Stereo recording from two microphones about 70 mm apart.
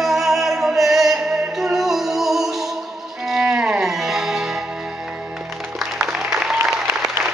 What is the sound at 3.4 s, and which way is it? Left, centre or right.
Music, centre.